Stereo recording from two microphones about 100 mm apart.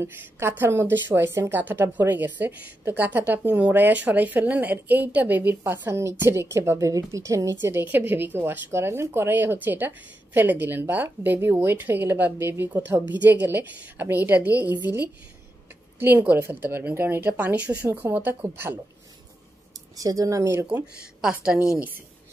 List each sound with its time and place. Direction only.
0.0 s a woman's voice: 25° right (ahead or behind)
16.0 s a woman's voice: 20° right (ahead or behind)
20.0 s speech: 35° right (ahead or behind)
21.5 s a woman's voice: 10° right (ahead or behind)